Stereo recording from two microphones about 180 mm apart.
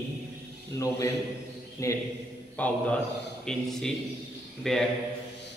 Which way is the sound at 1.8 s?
15° left (ahead or behind).